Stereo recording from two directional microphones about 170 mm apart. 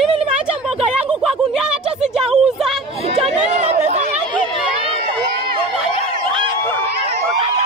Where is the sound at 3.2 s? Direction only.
40° right (ahead or behind).